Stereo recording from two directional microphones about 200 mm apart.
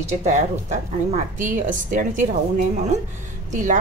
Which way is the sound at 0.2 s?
35° right (ahead or behind).